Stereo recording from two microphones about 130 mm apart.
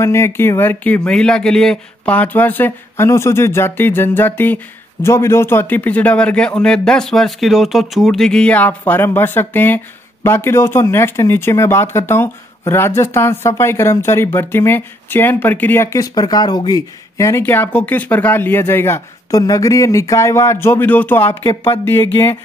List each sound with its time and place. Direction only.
0.0 s speech: 20° left (ahead or behind)